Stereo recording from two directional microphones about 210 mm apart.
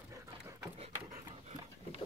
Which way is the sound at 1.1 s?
25° right (ahead or behind).